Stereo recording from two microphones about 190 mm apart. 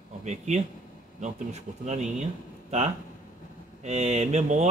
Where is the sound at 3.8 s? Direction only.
35° right (ahead or behind).